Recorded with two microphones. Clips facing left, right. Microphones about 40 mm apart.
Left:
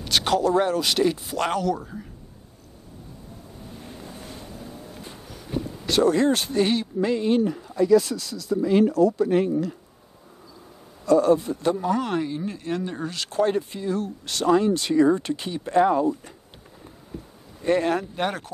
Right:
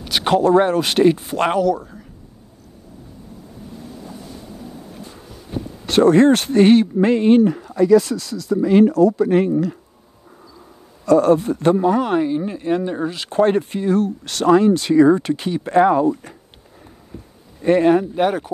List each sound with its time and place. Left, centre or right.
0.2 s speech: right
1.6 s speech: centre
5.9 s speech: right
7.4 s speech: right
11.1 s speech: right
11.8 s speech: centre
13.3 s speech: right
13.6 s speech: right
17.6 s speech: right